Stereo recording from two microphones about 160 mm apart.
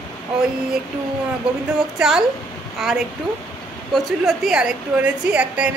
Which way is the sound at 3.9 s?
Centre (ahead or behind).